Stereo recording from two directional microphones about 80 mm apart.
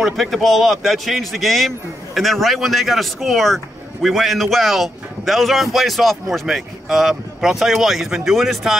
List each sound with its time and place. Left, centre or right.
0.0 s speech: centre